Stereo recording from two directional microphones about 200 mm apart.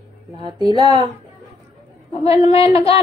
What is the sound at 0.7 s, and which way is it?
Speech, 20° right (ahead or behind).